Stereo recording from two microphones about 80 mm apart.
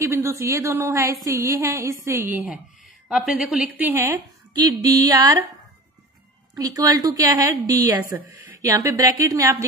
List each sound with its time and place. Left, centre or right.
0.0 s a woman's voice: right; by 3.9 s centre
3.9 s a woman's voice: right
4.6 s a woman's voice: right
6.5 s a woman's voice: right